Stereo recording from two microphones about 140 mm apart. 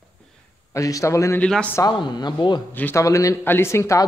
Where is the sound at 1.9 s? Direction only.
30° left (ahead or behind).